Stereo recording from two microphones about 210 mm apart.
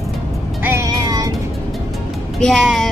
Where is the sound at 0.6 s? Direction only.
15° right (ahead or behind).